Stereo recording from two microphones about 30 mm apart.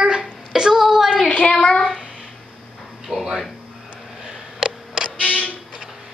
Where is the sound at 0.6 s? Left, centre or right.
Centre.